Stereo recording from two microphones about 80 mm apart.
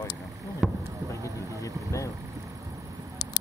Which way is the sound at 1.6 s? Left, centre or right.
Left.